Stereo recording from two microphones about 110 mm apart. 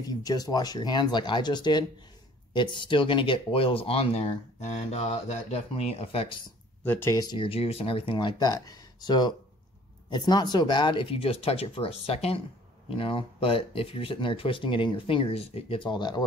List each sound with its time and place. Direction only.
0.0 s speech: 35° left (ahead or behind); by 6.3 s 60° left (ahead or behind)
6.8 s speech: 20° left (ahead or behind)
7.2 s speech: 40° left (ahead or behind)
7.4 s speech: 60° left (ahead or behind); by 16.3 s 40° left (ahead or behind)